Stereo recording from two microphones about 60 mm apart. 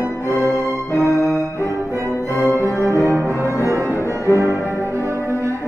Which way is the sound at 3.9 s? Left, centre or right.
Left.